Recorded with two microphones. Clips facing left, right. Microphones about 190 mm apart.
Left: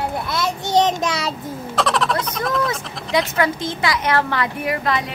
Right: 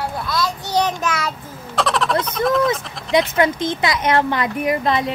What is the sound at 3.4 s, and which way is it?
Speech, 20° right (ahead or behind).